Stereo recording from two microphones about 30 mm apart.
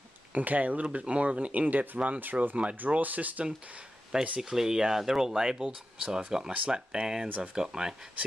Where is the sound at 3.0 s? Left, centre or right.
Right.